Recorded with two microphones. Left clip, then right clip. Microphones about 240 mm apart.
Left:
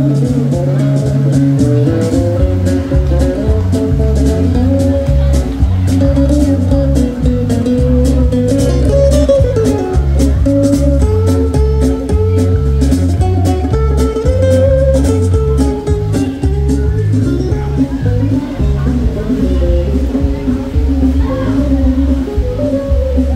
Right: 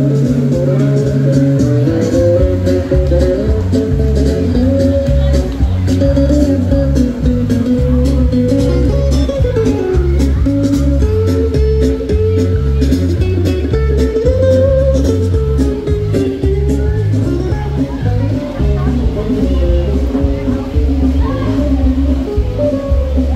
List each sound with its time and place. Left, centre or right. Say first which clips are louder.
8.0 s music: left 1 dB; left
14.2 s music: right 1 dB; left